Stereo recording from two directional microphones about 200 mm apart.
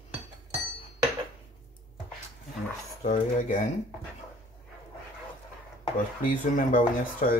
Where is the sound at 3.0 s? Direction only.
40° left (ahead or behind).